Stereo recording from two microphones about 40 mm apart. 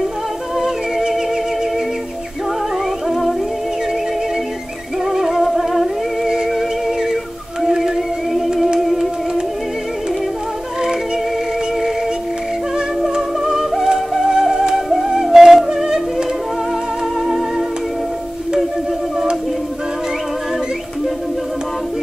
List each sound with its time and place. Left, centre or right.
0.6 s music: centre
3.1 s music: centre
5.0 s music: centre
5.4 s humming: centre
7.6 s whale vocalization: centre
8.7 s music: centre
13.4 s music: centre
15.2 s a sound: centre